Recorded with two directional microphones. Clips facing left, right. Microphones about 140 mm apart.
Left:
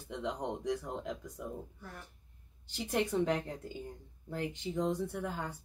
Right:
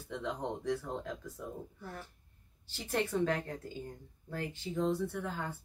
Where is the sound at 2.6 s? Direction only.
15° left (ahead or behind).